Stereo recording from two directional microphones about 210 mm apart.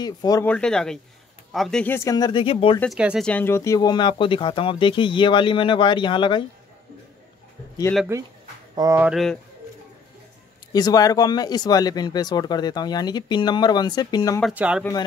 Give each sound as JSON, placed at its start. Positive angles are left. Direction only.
{"t": 0.0, "sound": "speech", "side_deg": 20}
{"t": 0.5, "sound": "speech", "side_deg": 5}
{"t": 2.8, "sound": "speech", "side_deg": -5}
{"t": 3.3, "sound": "speech", "side_deg": 10}
{"t": 8.7, "sound": "speech", "side_deg": -15}
{"t": 9.1, "sound": "speech", "side_deg": 0}
{"t": 10.7, "sound": "speech", "side_deg": 20}
{"t": 14.4, "sound": "speech", "side_deg": -5}